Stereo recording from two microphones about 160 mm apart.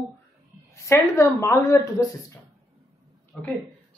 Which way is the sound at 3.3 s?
5° left (ahead or behind).